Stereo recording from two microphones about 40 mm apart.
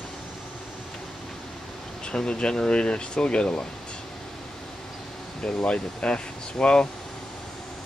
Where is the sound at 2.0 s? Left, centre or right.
Left.